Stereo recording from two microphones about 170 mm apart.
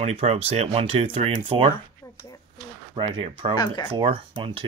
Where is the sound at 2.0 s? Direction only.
20° left (ahead or behind).